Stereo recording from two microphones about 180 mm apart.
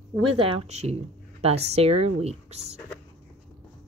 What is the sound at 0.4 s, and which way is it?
Speech, 35° right (ahead or behind).